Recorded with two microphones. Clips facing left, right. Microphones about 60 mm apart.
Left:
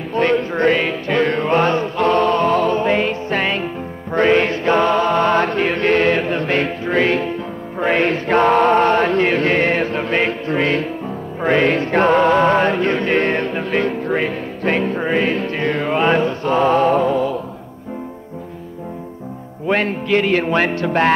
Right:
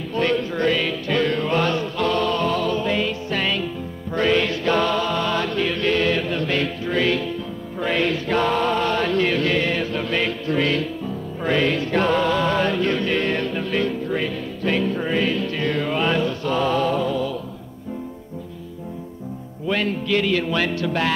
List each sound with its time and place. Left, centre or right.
0.1 s music: left
7.8 s chant: left
19.7 s music: left